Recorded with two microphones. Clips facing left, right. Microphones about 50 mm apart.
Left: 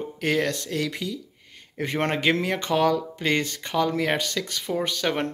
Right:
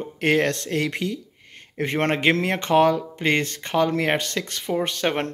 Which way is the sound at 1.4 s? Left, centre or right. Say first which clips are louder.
Right 3 dB; right.